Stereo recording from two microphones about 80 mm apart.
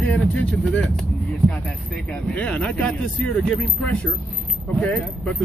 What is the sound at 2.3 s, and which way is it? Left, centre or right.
Speech, centre.